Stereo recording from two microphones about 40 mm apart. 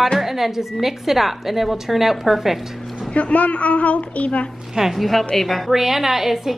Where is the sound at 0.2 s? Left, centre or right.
Centre.